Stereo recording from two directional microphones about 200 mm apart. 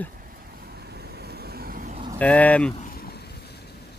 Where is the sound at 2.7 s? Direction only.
45° left (ahead or behind).